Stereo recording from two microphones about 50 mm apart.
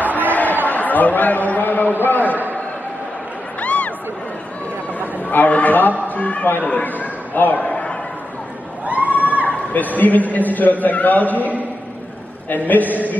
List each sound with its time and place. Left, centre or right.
0.3 s chatter: left
0.7 s a man's voice: left
2.2 s a man's voice: right
3.6 s a sound: left
5.3 s a man's voice: left
6.7 s a sound: left
8.8 s crowd: right
9.7 s a man's voice: left